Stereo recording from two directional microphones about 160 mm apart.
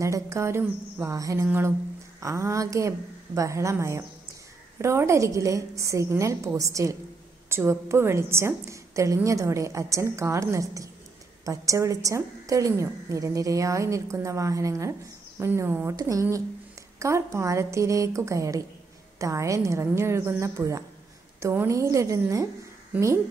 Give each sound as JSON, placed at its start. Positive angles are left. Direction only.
{"t": 0.0, "sound": "a woman's voice", "side_deg": -20}